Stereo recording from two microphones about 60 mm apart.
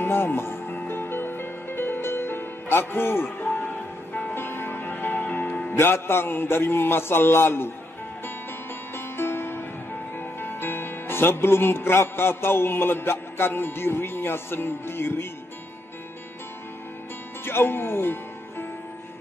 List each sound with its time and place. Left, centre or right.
0.0 s music: left
4.1 s music: left
5.8 s a man's voice: left
8.9 s music: left
10.1 s speech: left
17.5 s music: left